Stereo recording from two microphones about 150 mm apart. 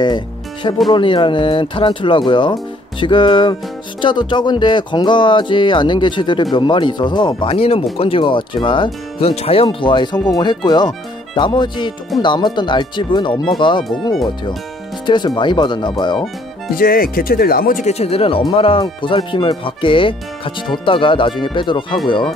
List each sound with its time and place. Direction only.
0.9 s speech: 35° left (ahead or behind)
15.0 s speech: 30° left (ahead or behind)
16.7 s speech: 75° left (ahead or behind)
17.8 s speech: 45° left (ahead or behind)